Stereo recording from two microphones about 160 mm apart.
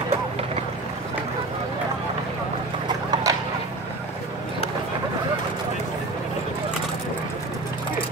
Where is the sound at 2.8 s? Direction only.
25° right (ahead or behind).